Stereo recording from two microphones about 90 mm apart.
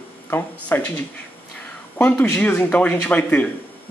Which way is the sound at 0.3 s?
20° left (ahead or behind).